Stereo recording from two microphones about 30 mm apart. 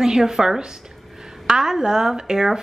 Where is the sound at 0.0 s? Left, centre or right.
Centre.